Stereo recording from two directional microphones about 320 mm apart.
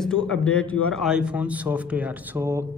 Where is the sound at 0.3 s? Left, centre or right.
Centre.